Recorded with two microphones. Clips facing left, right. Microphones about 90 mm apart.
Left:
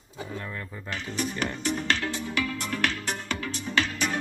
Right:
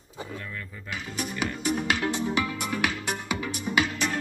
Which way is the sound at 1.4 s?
5° right (ahead or behind).